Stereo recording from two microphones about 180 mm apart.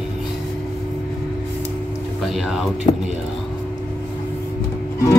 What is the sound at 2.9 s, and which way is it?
Speech, 30° left (ahead or behind).